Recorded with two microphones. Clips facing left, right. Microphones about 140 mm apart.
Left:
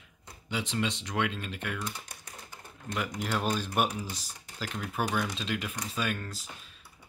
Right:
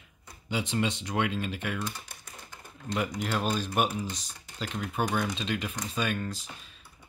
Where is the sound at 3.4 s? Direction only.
15° left (ahead or behind).